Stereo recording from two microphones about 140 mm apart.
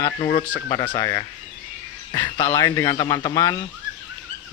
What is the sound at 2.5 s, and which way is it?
Speech, 25° left (ahead or behind).